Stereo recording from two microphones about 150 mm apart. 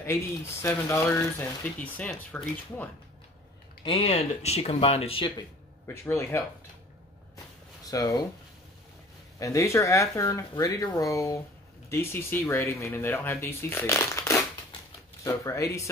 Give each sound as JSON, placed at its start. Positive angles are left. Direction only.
{"t": 0.0, "sound": "speech", "side_deg": 15}
{"t": 3.8, "sound": "speech", "side_deg": 40}
{"t": 6.0, "sound": "speech", "side_deg": 15}
{"t": 7.9, "sound": "speech", "side_deg": 25}
{"t": 9.4, "sound": "speech", "side_deg": 20}